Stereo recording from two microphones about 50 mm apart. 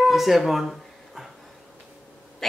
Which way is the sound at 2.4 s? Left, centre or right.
Centre.